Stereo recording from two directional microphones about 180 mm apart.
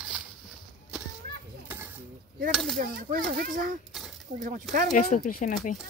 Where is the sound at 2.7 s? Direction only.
50° right (ahead or behind).